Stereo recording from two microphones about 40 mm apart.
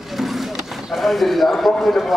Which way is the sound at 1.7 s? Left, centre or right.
Centre.